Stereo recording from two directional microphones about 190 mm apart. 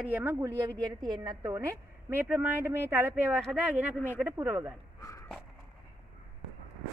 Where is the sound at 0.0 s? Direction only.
10° right (ahead or behind).